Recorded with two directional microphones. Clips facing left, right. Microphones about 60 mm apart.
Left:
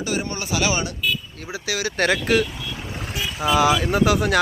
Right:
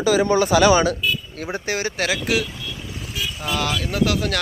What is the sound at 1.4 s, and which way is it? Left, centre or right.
Speech, right.